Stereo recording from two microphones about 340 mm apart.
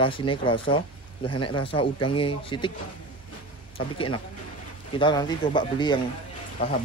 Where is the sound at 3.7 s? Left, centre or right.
Centre.